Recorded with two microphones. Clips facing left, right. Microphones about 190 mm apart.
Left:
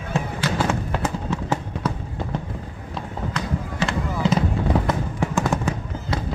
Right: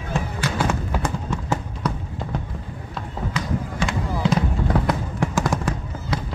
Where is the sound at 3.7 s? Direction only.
Centre (ahead or behind).